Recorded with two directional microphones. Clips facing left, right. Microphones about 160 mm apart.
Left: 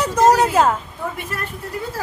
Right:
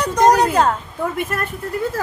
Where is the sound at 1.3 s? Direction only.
50° right (ahead or behind).